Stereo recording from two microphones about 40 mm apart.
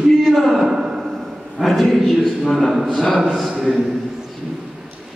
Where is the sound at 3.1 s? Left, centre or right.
Centre.